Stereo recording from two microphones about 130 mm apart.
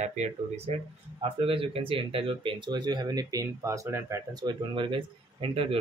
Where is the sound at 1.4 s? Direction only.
45° right (ahead or behind).